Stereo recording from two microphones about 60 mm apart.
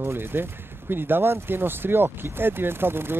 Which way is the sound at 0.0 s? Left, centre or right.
Right.